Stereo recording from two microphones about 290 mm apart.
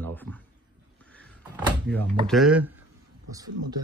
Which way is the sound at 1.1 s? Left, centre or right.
Centre.